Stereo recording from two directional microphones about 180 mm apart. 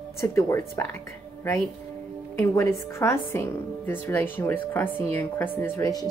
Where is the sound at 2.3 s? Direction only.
15° left (ahead or behind).